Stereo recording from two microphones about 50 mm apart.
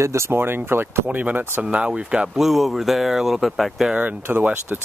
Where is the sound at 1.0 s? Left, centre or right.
Right.